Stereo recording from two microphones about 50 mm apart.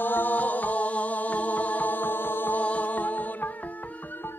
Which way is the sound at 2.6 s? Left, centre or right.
Left.